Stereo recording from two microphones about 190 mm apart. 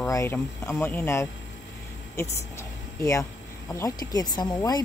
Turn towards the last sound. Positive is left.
turn(degrees=20)  # may be behind; listen again after turning